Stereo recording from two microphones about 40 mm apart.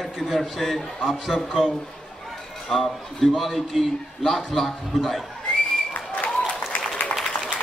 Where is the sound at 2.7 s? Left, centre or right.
Centre.